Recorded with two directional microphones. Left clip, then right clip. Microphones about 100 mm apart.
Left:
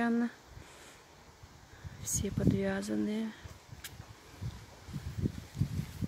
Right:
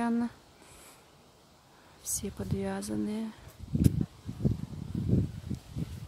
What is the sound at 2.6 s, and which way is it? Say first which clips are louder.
Speech: left 1 dB; 15° right (ahead or behind).